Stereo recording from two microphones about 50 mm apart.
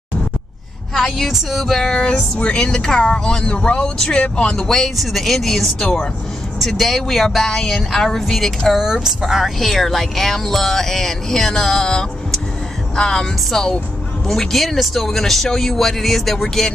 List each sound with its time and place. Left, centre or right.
0.9 s a woman's voice: centre
3.4 s speech: left
4.6 s speech: centre
8.7 s speech: centre